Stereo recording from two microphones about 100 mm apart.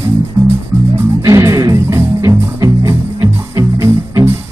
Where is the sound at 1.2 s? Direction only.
30° right (ahead or behind).